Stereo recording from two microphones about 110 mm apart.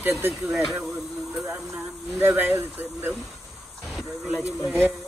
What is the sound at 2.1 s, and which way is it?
Speech, 20° right (ahead or behind).